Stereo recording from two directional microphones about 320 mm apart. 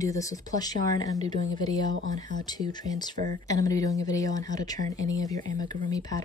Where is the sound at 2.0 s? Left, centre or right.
Right.